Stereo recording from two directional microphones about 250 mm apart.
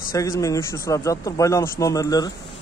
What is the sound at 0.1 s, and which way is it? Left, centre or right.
A man's voice, centre.